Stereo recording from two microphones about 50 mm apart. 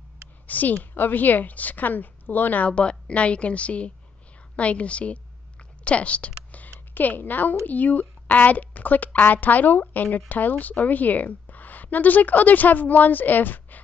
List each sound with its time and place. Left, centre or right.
0.5 s a woman's voice: left
2.7 s a woman's voice: left